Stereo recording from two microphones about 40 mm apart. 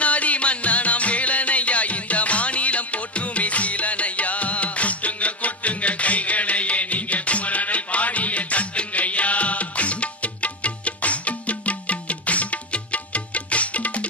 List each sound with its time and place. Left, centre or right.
0.0 s music: left